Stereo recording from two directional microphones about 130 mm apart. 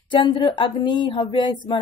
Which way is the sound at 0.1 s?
35° left (ahead or behind).